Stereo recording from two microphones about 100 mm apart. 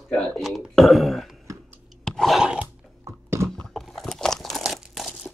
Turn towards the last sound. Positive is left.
turn(degrees=0)  # may be behind; listen again after turning